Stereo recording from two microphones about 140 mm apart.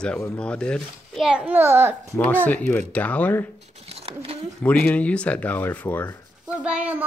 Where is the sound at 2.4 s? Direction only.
10° left (ahead or behind).